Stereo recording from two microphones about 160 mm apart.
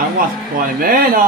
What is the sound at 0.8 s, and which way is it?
Speech, 65° right (ahead or behind).